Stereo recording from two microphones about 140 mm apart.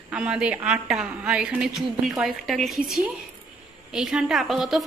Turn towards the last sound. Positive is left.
turn(degrees=0)  # may be behind; listen again after turning